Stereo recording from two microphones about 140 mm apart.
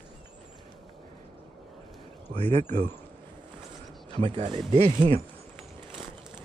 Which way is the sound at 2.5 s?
70° right (ahead or behind).